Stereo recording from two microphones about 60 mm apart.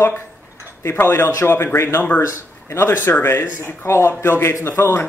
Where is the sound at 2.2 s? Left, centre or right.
Left.